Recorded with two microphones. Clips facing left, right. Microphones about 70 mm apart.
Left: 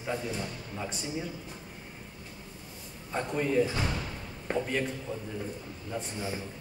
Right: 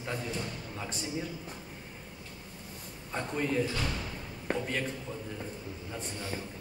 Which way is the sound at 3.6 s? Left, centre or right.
Left.